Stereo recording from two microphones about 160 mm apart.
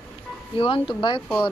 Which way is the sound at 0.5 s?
35° left (ahead or behind).